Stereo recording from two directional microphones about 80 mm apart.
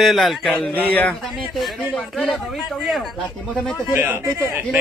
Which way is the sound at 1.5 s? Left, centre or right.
Centre.